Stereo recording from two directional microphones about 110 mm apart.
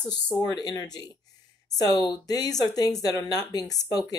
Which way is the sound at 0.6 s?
35° left (ahead or behind).